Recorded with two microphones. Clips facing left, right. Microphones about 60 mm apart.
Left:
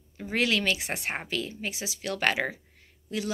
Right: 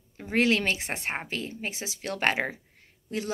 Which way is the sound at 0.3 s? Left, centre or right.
Right.